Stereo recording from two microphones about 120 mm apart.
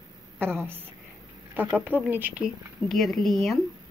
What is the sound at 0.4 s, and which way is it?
Speech, 20° right (ahead or behind).